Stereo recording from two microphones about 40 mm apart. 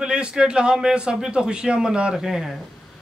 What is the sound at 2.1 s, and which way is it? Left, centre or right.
Speech, centre.